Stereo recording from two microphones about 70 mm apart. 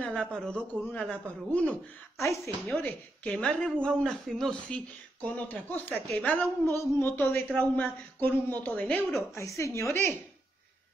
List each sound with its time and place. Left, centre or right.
0.0 s a man's voice: centre
2.1 s a woman's voice: left
2.6 s a woman's voice: left
6.6 s a woman's voice: left; by 9.0 s centre
9.3 s a woman's voice: left